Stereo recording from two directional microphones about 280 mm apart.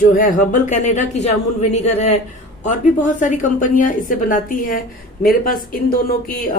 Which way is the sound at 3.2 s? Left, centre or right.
Left.